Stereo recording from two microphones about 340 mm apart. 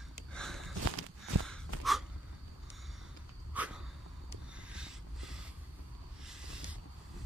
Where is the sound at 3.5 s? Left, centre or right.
Centre.